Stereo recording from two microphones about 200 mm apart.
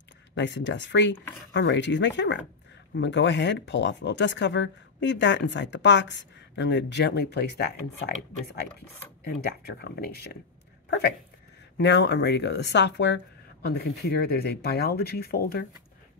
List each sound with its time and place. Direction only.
0.3 s speech: 65° left (ahead or behind)
9.4 s speech: 55° left (ahead or behind)
11.8 s speech: 60° left (ahead or behind)